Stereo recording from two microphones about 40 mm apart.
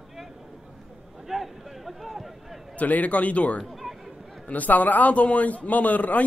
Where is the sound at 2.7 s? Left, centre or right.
Left.